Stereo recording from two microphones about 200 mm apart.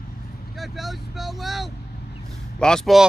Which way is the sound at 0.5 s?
Centre (ahead or behind).